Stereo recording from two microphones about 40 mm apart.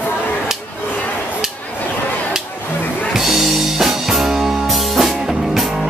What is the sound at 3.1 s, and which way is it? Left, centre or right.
Music, centre.